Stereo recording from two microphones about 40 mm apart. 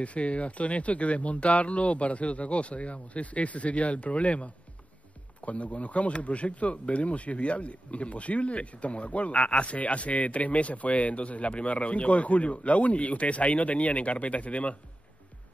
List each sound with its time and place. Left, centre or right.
0.0 s speech: left